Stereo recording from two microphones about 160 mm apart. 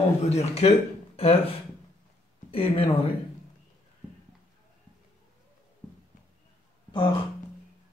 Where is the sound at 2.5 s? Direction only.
35° left (ahead or behind).